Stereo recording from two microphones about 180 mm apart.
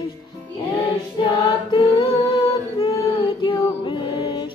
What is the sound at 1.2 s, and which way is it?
Choir, 25° left (ahead or behind).